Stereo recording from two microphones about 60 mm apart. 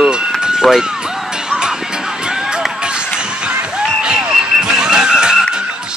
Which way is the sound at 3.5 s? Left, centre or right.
Centre.